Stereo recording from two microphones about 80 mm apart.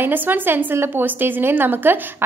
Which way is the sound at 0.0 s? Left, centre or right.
Right.